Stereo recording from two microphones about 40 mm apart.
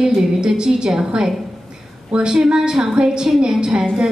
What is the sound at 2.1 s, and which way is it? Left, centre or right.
A woman's voice, right.